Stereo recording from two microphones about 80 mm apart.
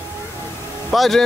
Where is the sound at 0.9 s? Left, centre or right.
Centre.